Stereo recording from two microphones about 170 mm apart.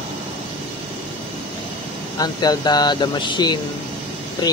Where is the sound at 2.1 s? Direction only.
25° left (ahead or behind).